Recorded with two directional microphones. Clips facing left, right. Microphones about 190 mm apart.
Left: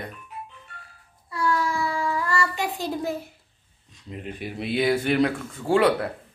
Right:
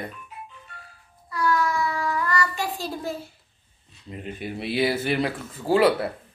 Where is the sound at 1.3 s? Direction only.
25° left (ahead or behind).